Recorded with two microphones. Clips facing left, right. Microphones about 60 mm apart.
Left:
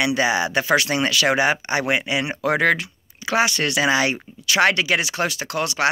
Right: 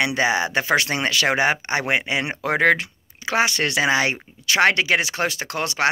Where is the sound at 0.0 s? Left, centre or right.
Right.